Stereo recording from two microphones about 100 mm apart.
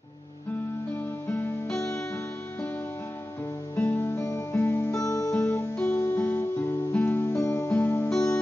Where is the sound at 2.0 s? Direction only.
25° left (ahead or behind).